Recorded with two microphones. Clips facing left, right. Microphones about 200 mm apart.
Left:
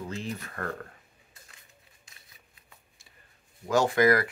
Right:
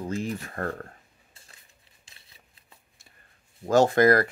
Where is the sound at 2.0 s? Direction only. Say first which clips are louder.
Even; 30° right (ahead or behind).